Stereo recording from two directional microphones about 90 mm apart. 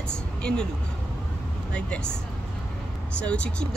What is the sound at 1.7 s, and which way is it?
Speech, 10° left (ahead or behind).